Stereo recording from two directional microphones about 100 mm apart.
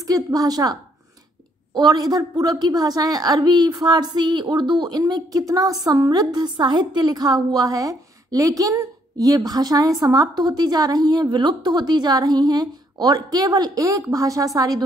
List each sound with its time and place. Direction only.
0.0 s a woman's voice: 40° right (ahead or behind)